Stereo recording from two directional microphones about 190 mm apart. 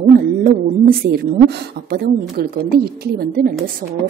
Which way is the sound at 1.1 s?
55° right (ahead or behind).